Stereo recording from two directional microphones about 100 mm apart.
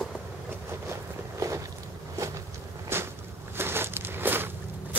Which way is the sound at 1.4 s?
30° right (ahead or behind).